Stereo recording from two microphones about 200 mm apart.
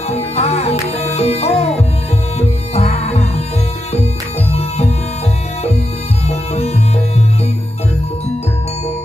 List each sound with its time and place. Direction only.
0.1 s music: 30° left (ahead or behind)
4.5 s music: 30° left (ahead or behind)
6.2 s music: 30° left (ahead or behind)